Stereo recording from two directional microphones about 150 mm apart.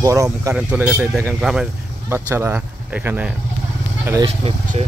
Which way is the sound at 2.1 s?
15° right (ahead or behind).